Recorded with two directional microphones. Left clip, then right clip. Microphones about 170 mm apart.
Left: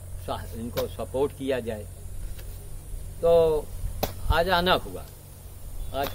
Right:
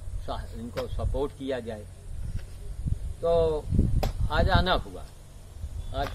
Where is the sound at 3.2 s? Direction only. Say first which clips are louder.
Left 4 dB; 5° left (ahead or behind).